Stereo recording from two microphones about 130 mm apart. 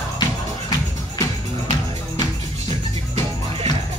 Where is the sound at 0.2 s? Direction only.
30° left (ahead or behind).